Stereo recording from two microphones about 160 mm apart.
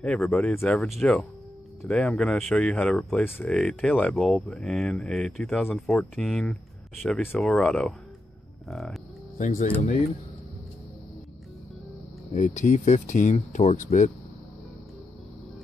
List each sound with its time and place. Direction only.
0.0 s speech: 5° left (ahead or behind)
9.4 s speech: 50° left (ahead or behind)
12.4 s speech: 50° left (ahead or behind)